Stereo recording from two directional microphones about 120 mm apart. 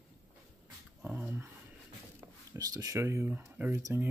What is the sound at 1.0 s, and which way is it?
Speech, 15° right (ahead or behind).